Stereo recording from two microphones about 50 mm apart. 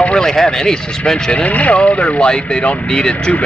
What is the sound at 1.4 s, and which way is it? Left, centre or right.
Speech, left.